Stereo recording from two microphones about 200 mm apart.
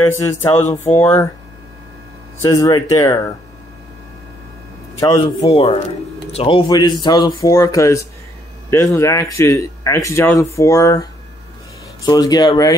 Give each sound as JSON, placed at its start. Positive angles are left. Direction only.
{"t": 0.0, "sound": "speech", "side_deg": 10}
{"t": 2.4, "sound": "speech", "side_deg": 15}
{"t": 5.0, "sound": "speech", "side_deg": 20}